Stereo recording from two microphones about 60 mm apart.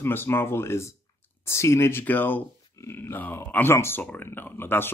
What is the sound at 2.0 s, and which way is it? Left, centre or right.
Speech, left.